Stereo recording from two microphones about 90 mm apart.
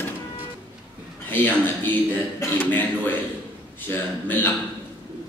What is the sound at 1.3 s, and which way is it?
Speech, 20° left (ahead or behind).